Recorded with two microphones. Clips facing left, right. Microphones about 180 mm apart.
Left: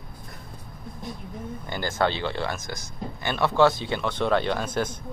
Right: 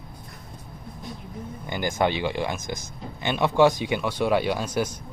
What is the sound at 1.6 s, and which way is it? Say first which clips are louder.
Speech: right 1 dB; 15° right (ahead or behind).